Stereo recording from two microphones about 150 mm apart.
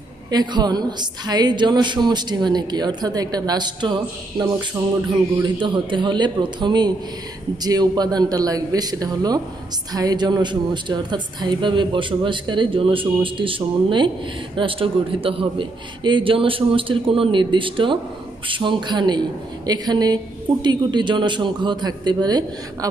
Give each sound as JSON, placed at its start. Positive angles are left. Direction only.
{"t": 0.3, "sound": "a woman's voice", "side_deg": -30}